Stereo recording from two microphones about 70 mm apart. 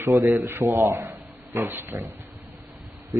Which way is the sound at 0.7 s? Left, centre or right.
Right.